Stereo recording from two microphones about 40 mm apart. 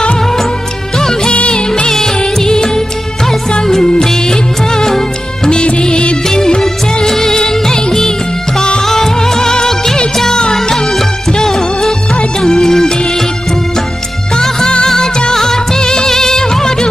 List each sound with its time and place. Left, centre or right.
0.9 s music: centre
1.3 s music: left
1.9 s music of bollywood: centre
3.3 s music: centre
4.0 s music of bollywood: centre
12.4 s music: centre
14.3 s music: centre
14.9 s music of bollywood: centre